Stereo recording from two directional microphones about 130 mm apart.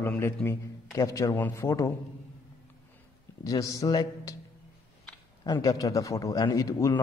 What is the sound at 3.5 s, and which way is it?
Speech, 25° left (ahead or behind).